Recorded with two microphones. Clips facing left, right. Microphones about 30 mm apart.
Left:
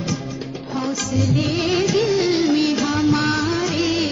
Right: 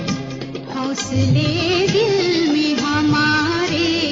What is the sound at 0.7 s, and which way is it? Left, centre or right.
Music, centre.